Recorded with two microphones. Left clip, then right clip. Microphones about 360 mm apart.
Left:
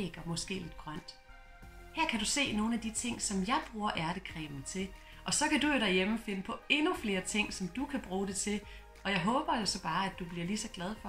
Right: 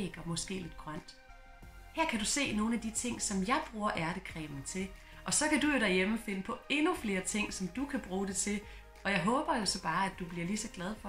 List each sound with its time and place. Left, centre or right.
0.0 s speech: centre
2.0 s speech: centre